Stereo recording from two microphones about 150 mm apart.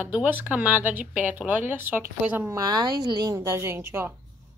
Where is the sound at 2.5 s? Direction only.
25° right (ahead or behind).